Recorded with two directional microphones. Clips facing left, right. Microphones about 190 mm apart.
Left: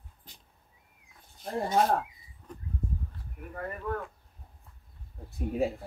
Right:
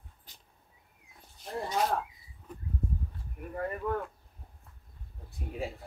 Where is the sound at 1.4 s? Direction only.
50° left (ahead or behind).